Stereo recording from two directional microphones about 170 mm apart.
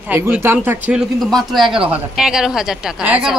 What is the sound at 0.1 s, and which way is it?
Speech, 15° right (ahead or behind).